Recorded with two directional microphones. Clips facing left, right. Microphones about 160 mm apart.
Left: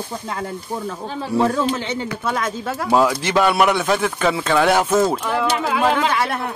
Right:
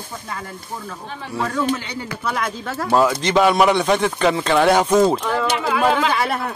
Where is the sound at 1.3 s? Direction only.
25° left (ahead or behind).